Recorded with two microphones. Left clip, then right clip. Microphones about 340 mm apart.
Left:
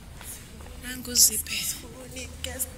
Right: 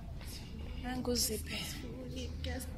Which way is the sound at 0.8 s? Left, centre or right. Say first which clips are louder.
Left 11 dB; right.